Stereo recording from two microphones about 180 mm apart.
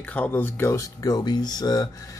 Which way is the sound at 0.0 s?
10° left (ahead or behind).